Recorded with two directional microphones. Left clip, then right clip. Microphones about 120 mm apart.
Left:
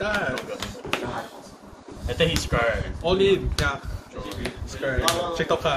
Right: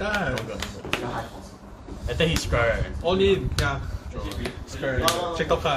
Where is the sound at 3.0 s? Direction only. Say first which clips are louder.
Left 1 dB; 65° left (ahead or behind).